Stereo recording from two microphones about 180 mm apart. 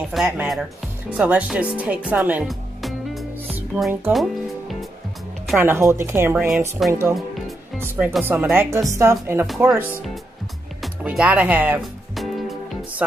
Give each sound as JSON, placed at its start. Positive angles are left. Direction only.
{"t": 0.1, "sound": "speech", "side_deg": -5}
{"t": 4.1, "sound": "music", "side_deg": 0}
{"t": 5.6, "sound": "speech", "side_deg": -10}
{"t": 7.2, "sound": "music", "side_deg": 0}
{"t": 7.8, "sound": "speech", "side_deg": -10}
{"t": 10.8, "sound": "music", "side_deg": -5}